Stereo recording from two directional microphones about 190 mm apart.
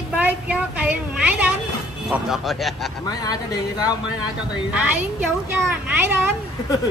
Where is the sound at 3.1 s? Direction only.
20° left (ahead or behind).